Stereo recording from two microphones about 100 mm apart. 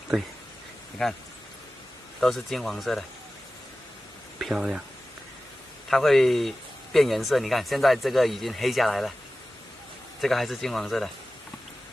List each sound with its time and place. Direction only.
1.0 s speech: 5° left (ahead or behind)
4.4 s speech: 5° right (ahead or behind)
5.9 s speech: centre (ahead or behind)
10.2 s speech: centre (ahead or behind)